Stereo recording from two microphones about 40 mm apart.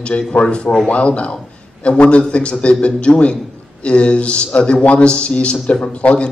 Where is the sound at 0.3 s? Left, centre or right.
Left.